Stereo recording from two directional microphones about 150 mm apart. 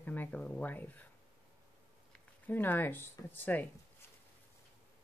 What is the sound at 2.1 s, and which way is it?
Speech, 10° left (ahead or behind).